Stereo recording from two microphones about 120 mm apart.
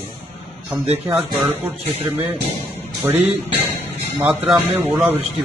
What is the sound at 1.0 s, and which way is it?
Speech, 20° right (ahead or behind).